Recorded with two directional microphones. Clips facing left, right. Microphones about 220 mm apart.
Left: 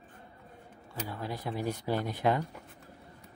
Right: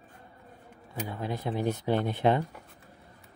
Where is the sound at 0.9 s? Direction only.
20° right (ahead or behind).